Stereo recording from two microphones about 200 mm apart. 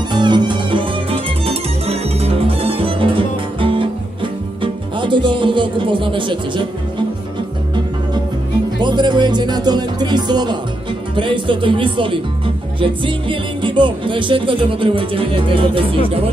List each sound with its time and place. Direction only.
0.1 s music: 20° right (ahead or behind)
8.8 s speech: 20° right (ahead or behind)